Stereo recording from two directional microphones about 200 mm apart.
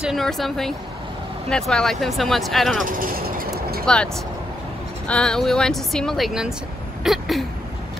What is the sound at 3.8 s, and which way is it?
Speech, 5° left (ahead or behind).